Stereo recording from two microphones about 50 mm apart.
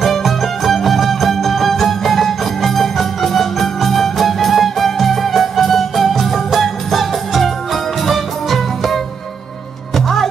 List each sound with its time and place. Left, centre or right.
0.0 s music: centre